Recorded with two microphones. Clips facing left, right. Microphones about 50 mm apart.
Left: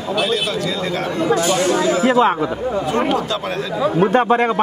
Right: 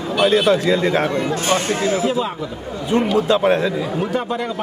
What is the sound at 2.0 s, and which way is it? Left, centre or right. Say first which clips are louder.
Speech: left 6 dB; left.